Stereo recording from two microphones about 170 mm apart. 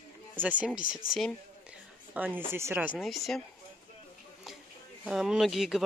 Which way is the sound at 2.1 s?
10° right (ahead or behind).